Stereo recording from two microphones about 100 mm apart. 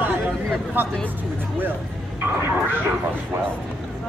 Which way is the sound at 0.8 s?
20° right (ahead or behind).